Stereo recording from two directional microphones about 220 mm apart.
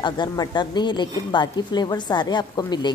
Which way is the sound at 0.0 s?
20° left (ahead or behind).